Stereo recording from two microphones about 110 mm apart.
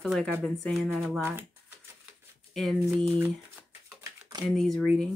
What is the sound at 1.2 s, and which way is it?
Typewriter, 20° right (ahead or behind).